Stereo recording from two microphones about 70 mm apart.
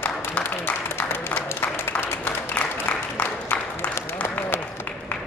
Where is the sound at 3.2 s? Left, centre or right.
Left.